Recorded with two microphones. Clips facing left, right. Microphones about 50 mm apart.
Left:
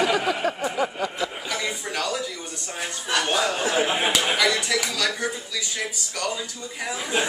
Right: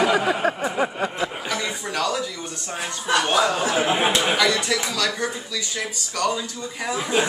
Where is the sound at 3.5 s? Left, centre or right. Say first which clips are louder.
Right 1 dB; centre.